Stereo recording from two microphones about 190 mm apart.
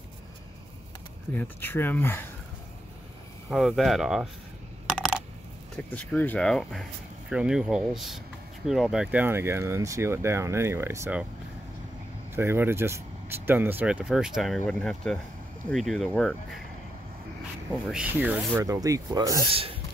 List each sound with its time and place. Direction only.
1.3 s speech: 10° left (ahead or behind)
3.4 s speech: centre (ahead or behind)
4.8 s coin: centre (ahead or behind)
5.9 s speech: 10° left (ahead or behind); by 11.2 s 10° right (ahead or behind)
12.4 s speech: 10° right (ahead or behind)
17.8 s speech: 5° right (ahead or behind)
19.5 s speech: 30° right (ahead or behind)